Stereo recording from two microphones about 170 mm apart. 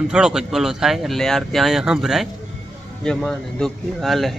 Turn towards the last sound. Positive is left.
turn(degrees=0)  # may be behind; listen again after turning